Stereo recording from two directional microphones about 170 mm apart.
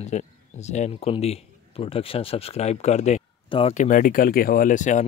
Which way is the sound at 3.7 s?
50° left (ahead or behind).